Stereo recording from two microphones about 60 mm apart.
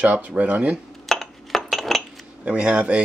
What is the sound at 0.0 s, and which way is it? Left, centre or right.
Speech, right.